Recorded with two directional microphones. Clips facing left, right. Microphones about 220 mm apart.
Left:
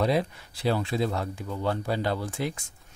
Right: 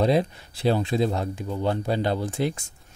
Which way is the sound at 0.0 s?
25° right (ahead or behind).